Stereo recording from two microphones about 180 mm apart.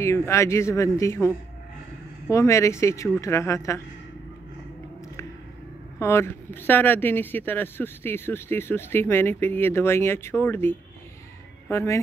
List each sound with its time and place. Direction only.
0.0 s speech: 15° left (ahead or behind)
5.9 s speech: 15° left (ahead or behind)